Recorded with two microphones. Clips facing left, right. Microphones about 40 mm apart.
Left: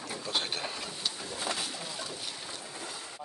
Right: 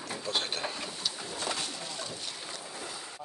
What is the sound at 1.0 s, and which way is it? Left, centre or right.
Bird, centre.